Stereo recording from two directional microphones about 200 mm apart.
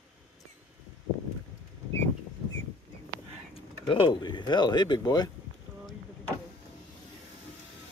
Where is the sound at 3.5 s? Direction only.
25° left (ahead or behind).